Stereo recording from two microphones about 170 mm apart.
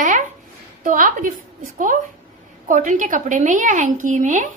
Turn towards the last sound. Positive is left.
turn(degrees=-50)  # may be behind; listen again after turning